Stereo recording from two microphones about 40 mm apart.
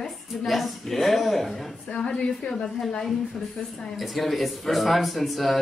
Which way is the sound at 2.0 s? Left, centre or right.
Left.